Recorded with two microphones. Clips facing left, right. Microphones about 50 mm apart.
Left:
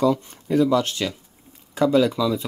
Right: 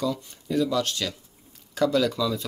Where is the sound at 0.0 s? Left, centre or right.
Left.